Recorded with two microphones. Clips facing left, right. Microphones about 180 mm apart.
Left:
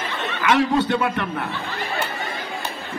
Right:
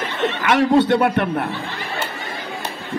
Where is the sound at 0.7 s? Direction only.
70° right (ahead or behind).